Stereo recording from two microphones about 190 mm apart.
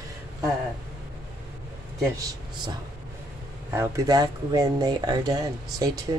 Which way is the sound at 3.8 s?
20° right (ahead or behind).